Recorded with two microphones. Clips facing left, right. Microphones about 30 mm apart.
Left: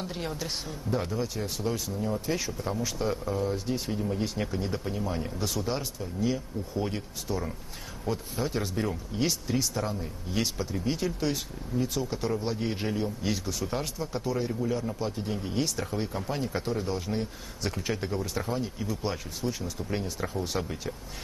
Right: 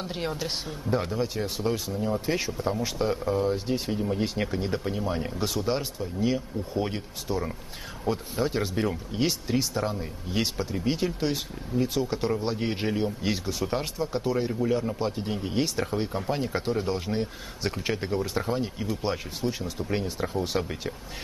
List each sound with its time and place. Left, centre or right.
0.0 s speech: right